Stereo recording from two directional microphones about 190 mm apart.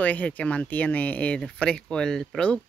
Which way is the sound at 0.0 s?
10° left (ahead or behind).